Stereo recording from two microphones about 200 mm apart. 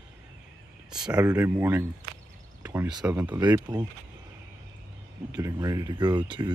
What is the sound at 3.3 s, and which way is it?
Speech, 20° right (ahead or behind).